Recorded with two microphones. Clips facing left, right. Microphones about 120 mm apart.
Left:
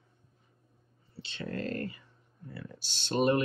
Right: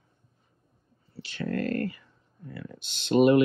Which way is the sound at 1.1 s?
25° left (ahead or behind).